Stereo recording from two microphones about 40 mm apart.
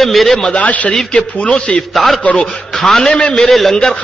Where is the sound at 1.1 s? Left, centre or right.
Left.